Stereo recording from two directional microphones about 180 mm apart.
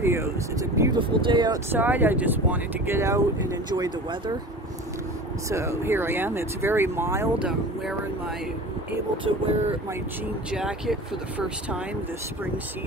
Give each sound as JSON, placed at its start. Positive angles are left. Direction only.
{"t": 0.0, "sound": "speech", "side_deg": -15}
{"t": 1.7, "sound": "speech", "side_deg": -10}
{"t": 5.5, "sound": "speech", "side_deg": -15}
{"t": 9.2, "sound": "vehicle", "side_deg": -30}
{"t": 10.5, "sound": "speech", "side_deg": -5}